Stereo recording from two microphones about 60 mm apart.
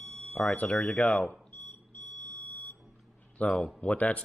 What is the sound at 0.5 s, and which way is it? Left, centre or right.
Speech, left.